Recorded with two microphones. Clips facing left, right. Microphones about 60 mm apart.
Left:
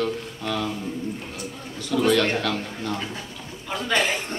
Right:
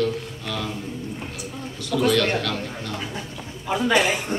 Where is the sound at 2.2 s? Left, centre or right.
Left.